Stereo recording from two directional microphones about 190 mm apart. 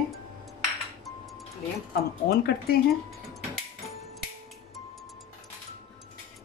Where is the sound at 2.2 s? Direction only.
55° left (ahead or behind).